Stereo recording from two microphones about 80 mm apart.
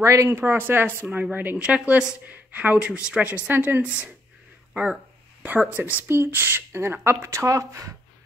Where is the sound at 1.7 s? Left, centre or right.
Centre.